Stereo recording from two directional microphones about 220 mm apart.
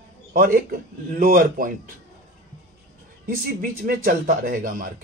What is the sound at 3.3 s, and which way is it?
Speech, 40° right (ahead or behind).